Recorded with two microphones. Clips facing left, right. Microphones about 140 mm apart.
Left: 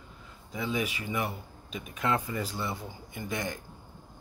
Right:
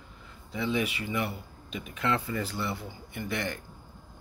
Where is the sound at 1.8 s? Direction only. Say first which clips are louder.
Even; 15° left (ahead or behind).